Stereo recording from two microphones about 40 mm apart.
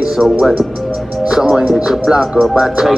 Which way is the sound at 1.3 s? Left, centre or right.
Centre.